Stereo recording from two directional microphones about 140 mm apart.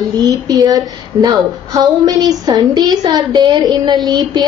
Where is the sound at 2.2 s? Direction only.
25° right (ahead or behind).